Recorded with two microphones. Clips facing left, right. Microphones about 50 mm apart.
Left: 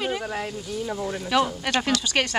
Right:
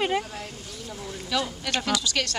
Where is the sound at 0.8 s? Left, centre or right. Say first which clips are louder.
Left 5 dB; left.